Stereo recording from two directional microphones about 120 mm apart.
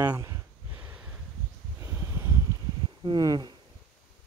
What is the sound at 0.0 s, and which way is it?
Speech, 30° right (ahead or behind).